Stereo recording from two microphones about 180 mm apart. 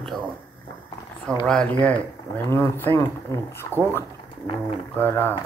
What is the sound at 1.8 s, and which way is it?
Speech, 10° left (ahead or behind).